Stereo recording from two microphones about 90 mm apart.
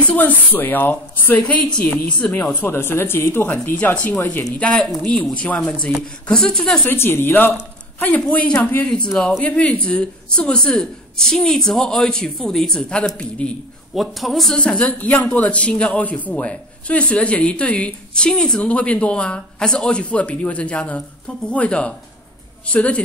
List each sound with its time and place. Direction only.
0.0 s a woman's voice: 20° left (ahead or behind)
1.4 s a man's voice: 10° left (ahead or behind)
2.6 s a woman's voice: 25° left (ahead or behind); by 6.9 s 5° left (ahead or behind)
6.9 s a woman's voice: 25° left (ahead or behind)
8.2 s a man's voice: 10° left (ahead or behind)
13.9 s a man's voice: centre (ahead or behind)